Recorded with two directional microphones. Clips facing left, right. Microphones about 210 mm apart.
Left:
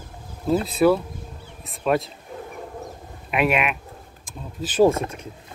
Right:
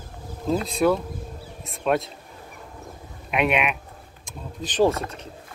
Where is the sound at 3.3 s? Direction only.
Centre (ahead or behind).